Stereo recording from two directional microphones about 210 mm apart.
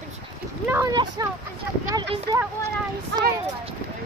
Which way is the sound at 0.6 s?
15° right (ahead or behind).